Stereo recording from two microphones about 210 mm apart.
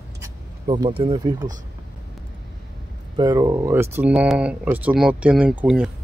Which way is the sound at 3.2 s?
15° right (ahead or behind).